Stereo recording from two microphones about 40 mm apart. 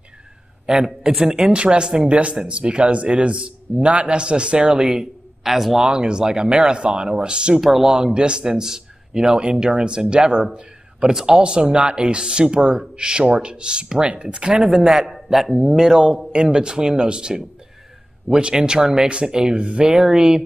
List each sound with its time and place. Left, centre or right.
0.7 s speech: centre
4.7 s speech: centre
5.9 s speech: centre
7.6 s speech: centre
7.9 s a man's voice: centre
14.9 s a man's voice: centre; by 19.9 s right
19.9 s speech: centre